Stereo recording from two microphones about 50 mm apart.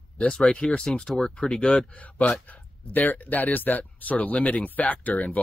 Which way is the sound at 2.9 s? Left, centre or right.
Left.